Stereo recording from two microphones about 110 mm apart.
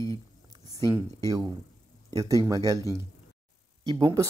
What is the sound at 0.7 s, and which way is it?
Speech, 35° right (ahead or behind).